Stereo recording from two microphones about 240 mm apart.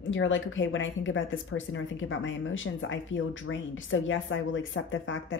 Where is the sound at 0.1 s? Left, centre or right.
Left.